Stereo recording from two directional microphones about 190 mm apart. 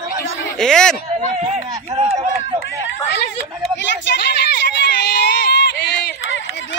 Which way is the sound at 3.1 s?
65° left (ahead or behind).